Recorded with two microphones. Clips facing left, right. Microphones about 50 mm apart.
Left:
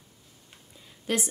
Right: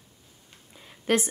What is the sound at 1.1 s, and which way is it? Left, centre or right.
Speech, right.